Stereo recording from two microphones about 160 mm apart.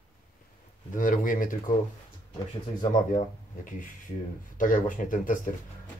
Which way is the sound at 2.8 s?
55° left (ahead or behind).